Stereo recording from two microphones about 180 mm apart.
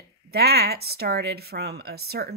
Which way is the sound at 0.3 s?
60° right (ahead or behind).